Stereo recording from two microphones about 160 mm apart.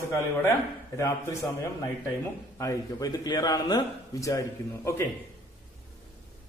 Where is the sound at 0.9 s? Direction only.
20° left (ahead or behind).